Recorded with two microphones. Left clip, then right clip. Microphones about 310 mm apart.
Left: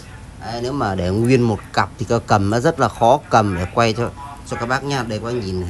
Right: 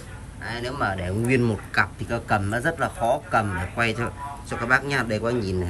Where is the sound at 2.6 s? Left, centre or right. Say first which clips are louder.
Left 10 dB; right.